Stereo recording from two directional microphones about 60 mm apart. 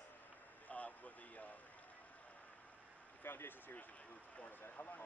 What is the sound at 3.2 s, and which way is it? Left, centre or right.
Speech, left.